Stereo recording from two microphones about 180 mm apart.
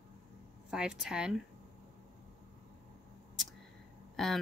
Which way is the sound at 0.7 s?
5° right (ahead or behind).